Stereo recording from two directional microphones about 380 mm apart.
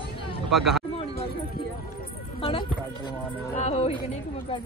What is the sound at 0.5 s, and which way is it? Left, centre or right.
Speech, centre.